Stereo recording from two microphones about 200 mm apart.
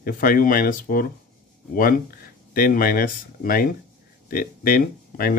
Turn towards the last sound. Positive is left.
turn(degrees=45)  # may be behind; listen again after turning